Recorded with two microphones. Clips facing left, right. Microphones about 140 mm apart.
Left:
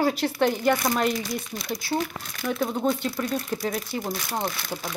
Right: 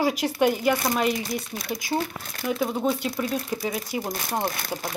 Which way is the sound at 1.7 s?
15° right (ahead or behind).